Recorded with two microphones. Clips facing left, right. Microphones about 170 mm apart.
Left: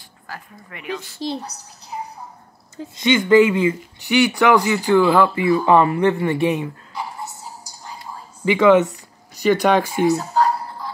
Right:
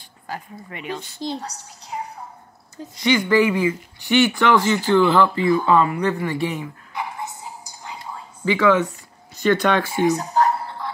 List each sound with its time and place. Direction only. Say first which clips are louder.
0.3 s a woman's voice: right 4 dB; 20° right (ahead or behind)
3.0 s speech: left 4 dB; 20° left (ahead or behind)
7.4 s a sound: right 1 dB; 20° right (ahead or behind)
8.5 s speech: left 4 dB; 20° left (ahead or behind)
10.0 s music: right 2 dB; 20° right (ahead or behind)